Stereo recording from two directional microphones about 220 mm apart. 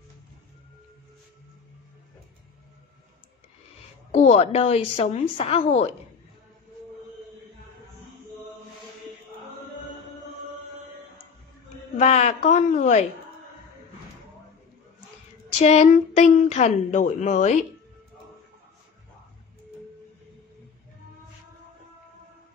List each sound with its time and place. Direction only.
4.1 s speech: 30° left (ahead or behind)
12.0 s speech: 30° left (ahead or behind)
15.6 s speech: 30° left (ahead or behind)